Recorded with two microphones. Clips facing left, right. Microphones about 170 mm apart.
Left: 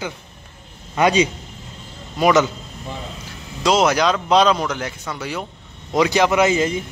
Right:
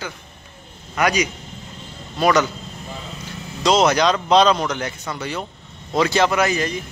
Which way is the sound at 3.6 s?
5° left (ahead or behind).